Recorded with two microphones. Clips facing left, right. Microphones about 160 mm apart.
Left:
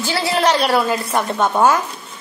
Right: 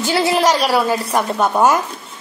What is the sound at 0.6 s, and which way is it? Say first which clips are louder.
A woman's voice: right 1 dB; 5° right (ahead or behind).